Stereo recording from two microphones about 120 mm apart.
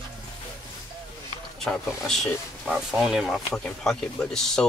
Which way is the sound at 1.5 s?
5° left (ahead or behind).